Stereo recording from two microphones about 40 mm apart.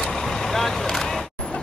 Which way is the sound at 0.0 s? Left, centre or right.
Centre.